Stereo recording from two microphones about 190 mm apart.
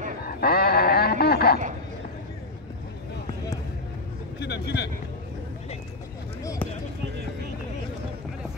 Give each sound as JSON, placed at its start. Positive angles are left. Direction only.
{"t": 0.3, "sound": "a sound", "side_deg": 55}
{"t": 4.4, "sound": "speech", "side_deg": 60}
{"t": 6.4, "sound": "basketball bounce", "side_deg": 15}